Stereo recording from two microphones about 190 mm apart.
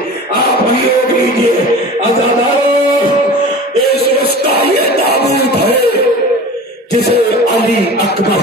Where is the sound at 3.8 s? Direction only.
55° left (ahead or behind).